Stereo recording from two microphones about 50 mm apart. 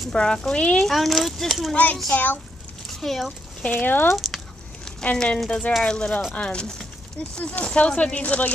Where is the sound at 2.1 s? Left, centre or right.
Left.